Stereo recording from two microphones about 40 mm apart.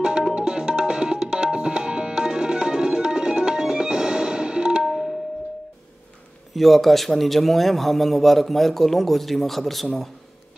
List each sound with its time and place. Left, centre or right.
0.3 s tabla: right
4.8 s music: centre
6.5 s a man's voice: centre